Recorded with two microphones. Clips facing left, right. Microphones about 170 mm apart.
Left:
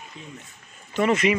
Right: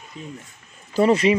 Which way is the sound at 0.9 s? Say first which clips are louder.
Right 4 dB; 30° right (ahead or behind).